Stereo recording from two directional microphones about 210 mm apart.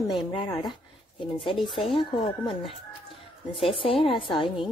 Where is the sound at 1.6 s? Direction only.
20° left (ahead or behind).